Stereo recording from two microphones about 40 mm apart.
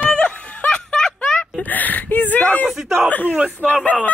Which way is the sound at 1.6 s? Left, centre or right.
Left.